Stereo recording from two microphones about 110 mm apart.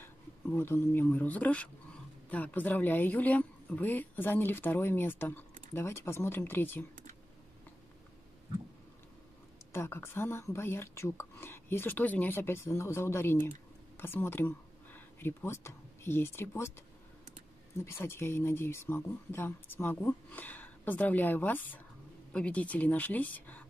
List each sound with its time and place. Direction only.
0.0 s speech: 20° left (ahead or behind)
9.7 s speech: 20° left (ahead or behind)
17.8 s speech: 25° left (ahead or behind)